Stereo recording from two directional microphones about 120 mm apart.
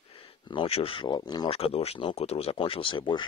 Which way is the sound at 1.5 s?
55° left (ahead or behind).